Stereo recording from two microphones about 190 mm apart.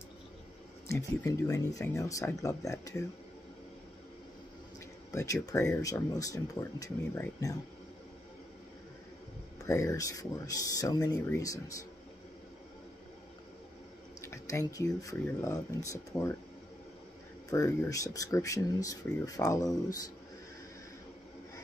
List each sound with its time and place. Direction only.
0.8 s speech: 15° left (ahead or behind)
5.1 s speech: 15° left (ahead or behind)
9.7 s speech: 15° left (ahead or behind)
14.2 s speech: 15° left (ahead or behind)
17.5 s speech: 15° left (ahead or behind)